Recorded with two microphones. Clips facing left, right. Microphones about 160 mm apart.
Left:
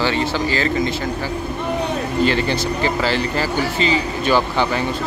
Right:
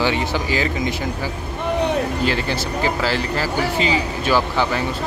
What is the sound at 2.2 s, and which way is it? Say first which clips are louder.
Speech: left 3 dB; 5° right (ahead or behind).